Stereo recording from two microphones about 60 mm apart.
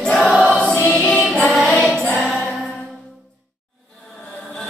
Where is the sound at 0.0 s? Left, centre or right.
Centre.